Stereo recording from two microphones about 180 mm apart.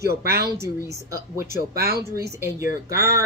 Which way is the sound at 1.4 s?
60° right (ahead or behind).